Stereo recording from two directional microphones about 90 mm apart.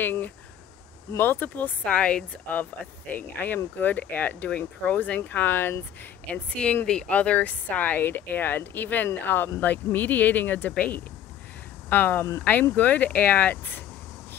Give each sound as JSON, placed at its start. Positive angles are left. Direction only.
{"t": 0.0, "sound": "speech", "side_deg": 20}